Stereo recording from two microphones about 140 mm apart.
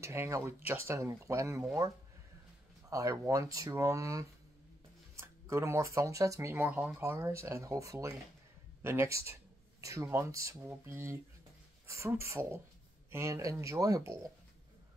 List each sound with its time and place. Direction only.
0.0 s speech: 20° right (ahead or behind)
2.9 s speech: 25° right (ahead or behind)